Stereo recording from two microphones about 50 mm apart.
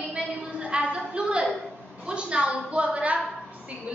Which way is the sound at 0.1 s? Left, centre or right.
Right.